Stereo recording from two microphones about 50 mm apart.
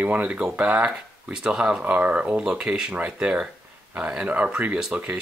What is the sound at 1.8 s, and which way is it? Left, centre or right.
Speech, right.